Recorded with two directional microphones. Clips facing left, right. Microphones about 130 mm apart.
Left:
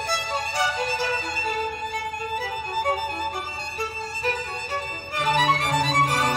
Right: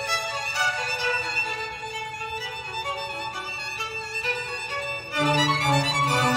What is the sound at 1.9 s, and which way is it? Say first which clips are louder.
Music: left 5 dB; 50° left (ahead or behind).